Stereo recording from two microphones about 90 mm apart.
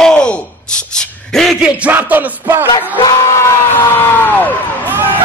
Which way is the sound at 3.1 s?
35° left (ahead or behind).